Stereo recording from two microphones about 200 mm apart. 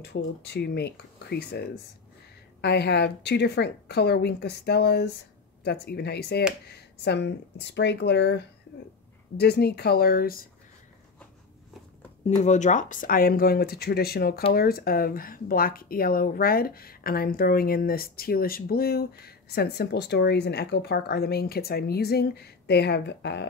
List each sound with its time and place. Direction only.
0.0 s a woman's voice: 55° left (ahead or behind)
2.6 s a woman's voice: 55° left (ahead or behind)
12.4 s speech: 35° left (ahead or behind); by 23.5 s 60° left (ahead or behind)